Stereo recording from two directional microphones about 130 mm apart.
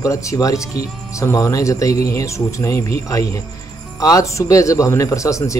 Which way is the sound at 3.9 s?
25° left (ahead or behind).